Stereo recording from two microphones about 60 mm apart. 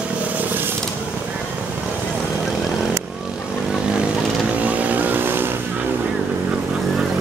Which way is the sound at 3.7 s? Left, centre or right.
Centre.